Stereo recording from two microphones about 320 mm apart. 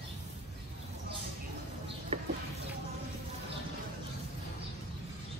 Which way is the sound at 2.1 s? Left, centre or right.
Centre.